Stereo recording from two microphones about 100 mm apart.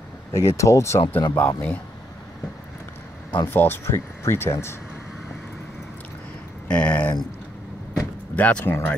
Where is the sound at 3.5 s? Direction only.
20° left (ahead or behind).